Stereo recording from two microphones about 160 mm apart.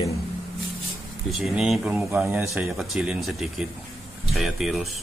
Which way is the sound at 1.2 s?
Centre (ahead or behind).